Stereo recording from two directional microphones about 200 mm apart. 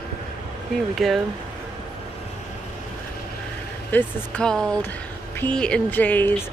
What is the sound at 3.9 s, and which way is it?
Speech, 5° left (ahead or behind).